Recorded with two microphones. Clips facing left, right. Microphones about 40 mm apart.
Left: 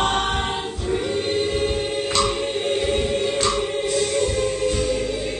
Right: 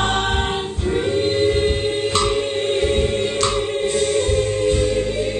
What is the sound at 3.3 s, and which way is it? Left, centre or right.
Choir, centre.